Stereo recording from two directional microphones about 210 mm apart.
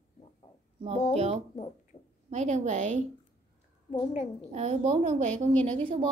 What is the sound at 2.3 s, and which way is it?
Speech, 35° right (ahead or behind).